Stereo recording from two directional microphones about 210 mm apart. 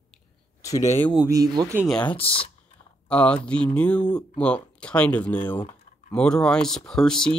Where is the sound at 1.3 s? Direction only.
20° right (ahead or behind).